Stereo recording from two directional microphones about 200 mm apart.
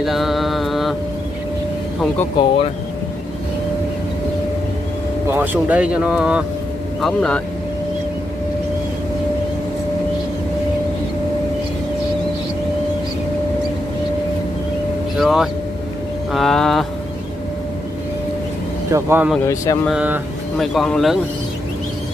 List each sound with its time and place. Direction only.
0.0 s mantra: centre (ahead or behind)
2.4 s speech: 20° left (ahead or behind)
5.3 s speech: 10° right (ahead or behind)
15.1 s speech: centre (ahead or behind)
18.9 s speech: 15° right (ahead or behind)
19.4 s speech: 15° left (ahead or behind)
19.9 s speech: 5° right (ahead or behind)